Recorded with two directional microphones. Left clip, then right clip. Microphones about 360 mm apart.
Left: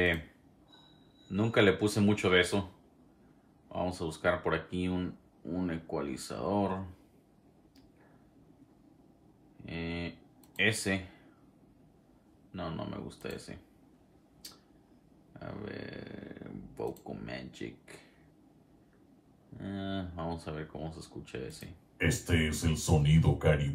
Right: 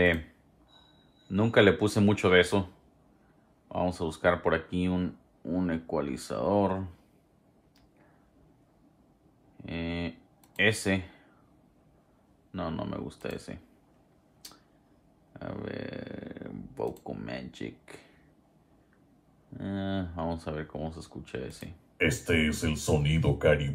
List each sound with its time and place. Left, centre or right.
1.3 s speech: right
3.6 s speech: right
9.7 s speech: centre
12.4 s speech: right
15.3 s speech: centre
19.6 s speech: right